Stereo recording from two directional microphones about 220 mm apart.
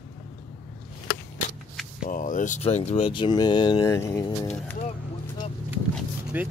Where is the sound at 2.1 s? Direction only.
35° left (ahead or behind); by 4.8 s 10° left (ahead or behind).